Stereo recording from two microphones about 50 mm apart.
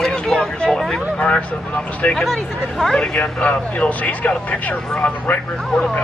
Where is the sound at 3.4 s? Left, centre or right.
Left.